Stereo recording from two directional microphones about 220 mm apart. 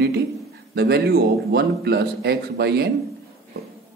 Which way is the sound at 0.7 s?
50° right (ahead or behind).